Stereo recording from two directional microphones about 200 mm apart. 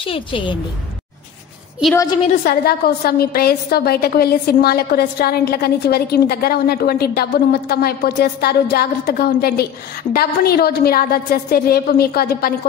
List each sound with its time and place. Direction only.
0.0 s a woman's voice: 25° left (ahead or behind)
2.4 s a woman's voice: 50° left (ahead or behind)